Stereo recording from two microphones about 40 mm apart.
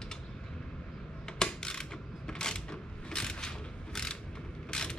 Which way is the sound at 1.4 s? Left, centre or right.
Centre.